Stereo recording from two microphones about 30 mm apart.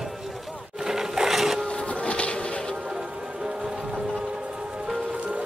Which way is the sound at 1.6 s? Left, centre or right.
Left.